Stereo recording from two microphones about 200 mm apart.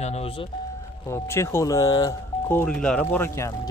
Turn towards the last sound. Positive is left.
turn(degrees=15)  # may be behind; listen again after turning